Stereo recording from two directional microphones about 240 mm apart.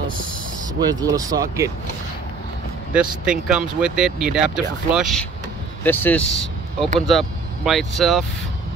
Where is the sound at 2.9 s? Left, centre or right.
Centre.